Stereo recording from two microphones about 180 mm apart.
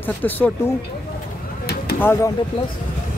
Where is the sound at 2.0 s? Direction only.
10° left (ahead or behind).